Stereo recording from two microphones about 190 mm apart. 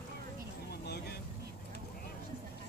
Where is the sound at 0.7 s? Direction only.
60° left (ahead or behind).